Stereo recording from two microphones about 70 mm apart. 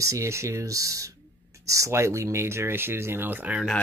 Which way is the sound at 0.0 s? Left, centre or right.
Right.